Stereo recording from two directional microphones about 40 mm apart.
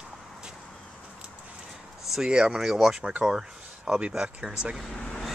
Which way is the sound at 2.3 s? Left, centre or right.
Right.